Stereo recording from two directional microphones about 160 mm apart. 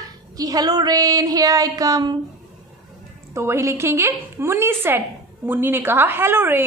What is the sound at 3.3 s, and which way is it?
A woman's voice, 15° right (ahead or behind).